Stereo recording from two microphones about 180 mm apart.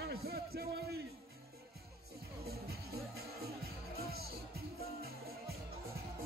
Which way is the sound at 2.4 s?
60° right (ahead or behind).